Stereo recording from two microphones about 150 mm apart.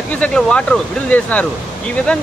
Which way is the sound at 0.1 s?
5° left (ahead or behind).